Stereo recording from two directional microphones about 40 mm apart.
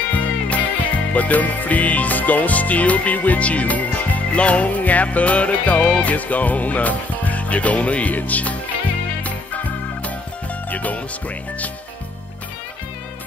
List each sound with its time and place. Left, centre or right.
0.1 s music: left
10.7 s speech: left